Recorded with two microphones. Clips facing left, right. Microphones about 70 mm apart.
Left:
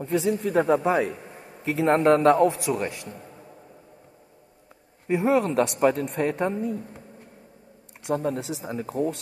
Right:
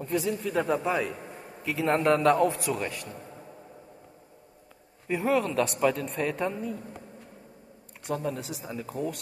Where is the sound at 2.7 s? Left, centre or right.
Left.